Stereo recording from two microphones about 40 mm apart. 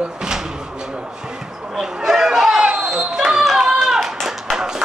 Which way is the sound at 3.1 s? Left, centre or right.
Centre.